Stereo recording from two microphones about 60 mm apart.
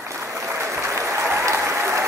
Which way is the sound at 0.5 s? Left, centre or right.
Right.